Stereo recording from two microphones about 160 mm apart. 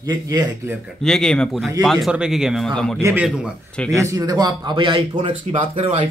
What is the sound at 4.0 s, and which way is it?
Speech, 20° right (ahead or behind).